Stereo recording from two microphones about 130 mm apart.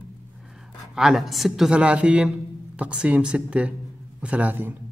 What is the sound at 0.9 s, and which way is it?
A man's voice, 5° right (ahead or behind).